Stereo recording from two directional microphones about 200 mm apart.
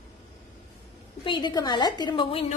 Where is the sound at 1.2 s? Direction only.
20° left (ahead or behind).